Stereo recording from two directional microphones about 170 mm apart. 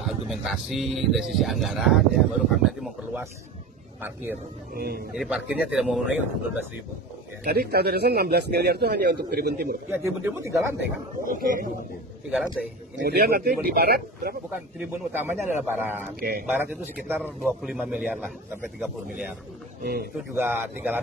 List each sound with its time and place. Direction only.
0.0 s a man's voice: centre (ahead or behind)
4.7 s a man's voice: 65° right (ahead or behind)
5.1 s speech: 5° right (ahead or behind)
7.5 s a man's voice: 70° right (ahead or behind)
9.8 s a man's voice: 10° right (ahead or behind)
11.2 s a man's voice: 55° right (ahead or behind)
13.0 s a man's voice: 65° right (ahead or behind)
14.5 s a man's voice: 10° right (ahead or behind)
16.2 s a man's voice: 60° right (ahead or behind)
16.5 s a man's voice: 10° right (ahead or behind)
19.8 s a man's voice: 65° right (ahead or behind)
20.3 s a man's voice: 10° right (ahead or behind)